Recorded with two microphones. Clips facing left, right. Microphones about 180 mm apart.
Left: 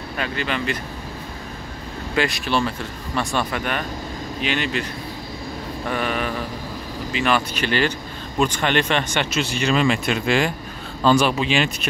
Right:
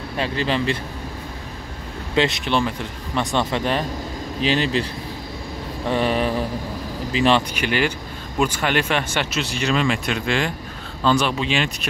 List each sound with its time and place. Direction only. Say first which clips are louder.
0.2 s speech: right 3 dB; 30° right (ahead or behind)
2.1 s speech: right 2 dB; 20° right (ahead or behind)
5.9 s speech: right 4 dB; 30° right (ahead or behind)
7.5 s speech: even; 10° right (ahead or behind); by 11.7 s 5° left (ahead or behind)